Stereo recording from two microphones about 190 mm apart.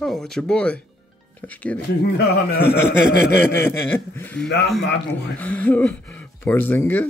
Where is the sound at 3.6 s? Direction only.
10° left (ahead or behind).